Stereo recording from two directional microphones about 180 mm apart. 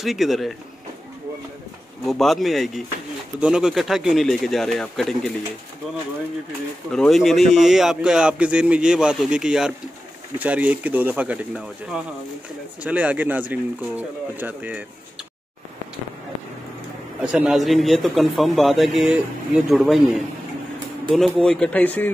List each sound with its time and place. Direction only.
0.0 s a man's voice: centre (ahead or behind)
2.0 s a man's voice: centre (ahead or behind)
6.9 s a man's voice: centre (ahead or behind)
17.2 s a man's voice: 5° right (ahead or behind)